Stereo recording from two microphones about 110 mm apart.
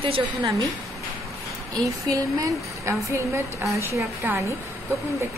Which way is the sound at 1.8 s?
30° right (ahead or behind).